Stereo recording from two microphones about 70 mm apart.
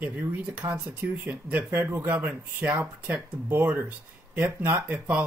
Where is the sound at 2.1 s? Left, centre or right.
Right.